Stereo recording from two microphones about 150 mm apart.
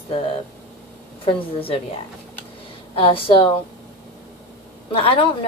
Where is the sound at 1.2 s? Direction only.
35° left (ahead or behind).